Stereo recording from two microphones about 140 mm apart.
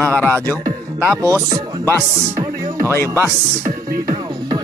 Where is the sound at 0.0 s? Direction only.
10° left (ahead or behind).